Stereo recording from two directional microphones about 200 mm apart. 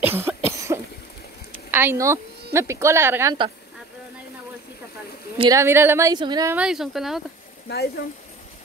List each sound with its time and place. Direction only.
0.0 s cough: 10° right (ahead or behind)
1.7 s speech: 10° right (ahead or behind)
5.4 s a woman's voice: 15° right (ahead or behind)
6.5 s speech: 5° right (ahead or behind)
7.6 s speech: 50° left (ahead or behind)